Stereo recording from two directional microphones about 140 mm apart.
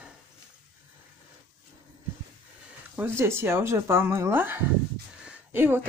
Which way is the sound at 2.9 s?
15° right (ahead or behind).